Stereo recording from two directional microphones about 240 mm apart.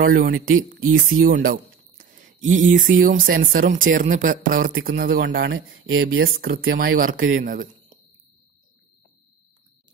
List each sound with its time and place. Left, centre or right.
0.0 s speech: right